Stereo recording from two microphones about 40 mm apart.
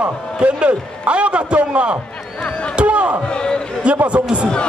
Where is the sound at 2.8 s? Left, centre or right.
Right.